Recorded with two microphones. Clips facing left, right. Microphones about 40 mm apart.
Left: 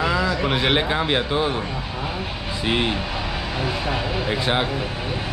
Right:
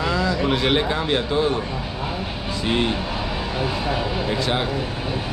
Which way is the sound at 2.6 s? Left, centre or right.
Centre.